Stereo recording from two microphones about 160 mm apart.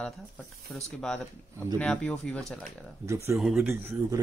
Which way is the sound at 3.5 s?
15° right (ahead or behind).